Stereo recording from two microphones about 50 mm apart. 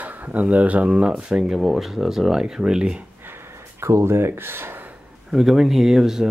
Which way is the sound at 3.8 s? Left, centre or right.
Right.